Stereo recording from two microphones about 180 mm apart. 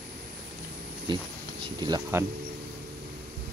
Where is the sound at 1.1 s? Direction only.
25° right (ahead or behind).